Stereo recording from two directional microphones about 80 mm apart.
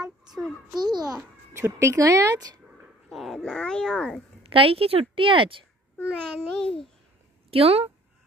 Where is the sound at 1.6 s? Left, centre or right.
Right.